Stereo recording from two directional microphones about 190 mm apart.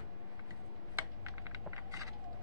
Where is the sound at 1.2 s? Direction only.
15° right (ahead or behind).